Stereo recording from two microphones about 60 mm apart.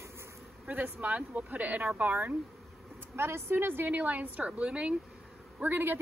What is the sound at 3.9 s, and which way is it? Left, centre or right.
Speech, right.